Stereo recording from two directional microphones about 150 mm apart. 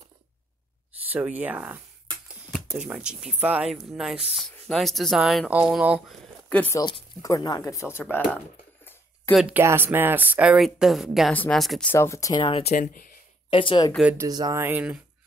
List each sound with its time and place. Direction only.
1.0 s speech: 10° right (ahead or behind)
2.8 s speech: 5° right (ahead or behind)
6.5 s speech: 10° left (ahead or behind)
6.8 s speech: 25° left (ahead or behind)
9.3 s speech: 5° right (ahead or behind)
9.6 s speech: 15° right (ahead or behind); by 11.9 s centre (ahead or behind)
11.9 s speech: 20° left (ahead or behind)
12.4 s speech: 35° left (ahead or behind)
12.7 s speech: 65° left (ahead or behind)
13.5 s speech: 35° left (ahead or behind)
14.1 s speech: 25° right (ahead or behind)
14.6 s speech: 10° right (ahead or behind)